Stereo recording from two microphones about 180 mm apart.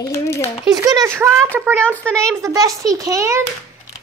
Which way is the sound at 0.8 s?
15° right (ahead or behind).